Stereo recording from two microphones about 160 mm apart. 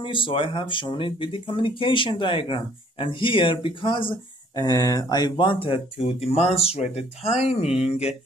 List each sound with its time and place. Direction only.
0.0 s speech: 30° left (ahead or behind)